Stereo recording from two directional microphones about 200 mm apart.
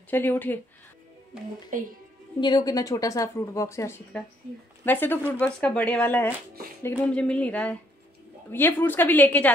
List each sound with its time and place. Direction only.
0.1 s speech: 10° left (ahead or behind)
1.7 s a woman's voice: 40° right (ahead or behind)
2.4 s speech: 20° left (ahead or behind)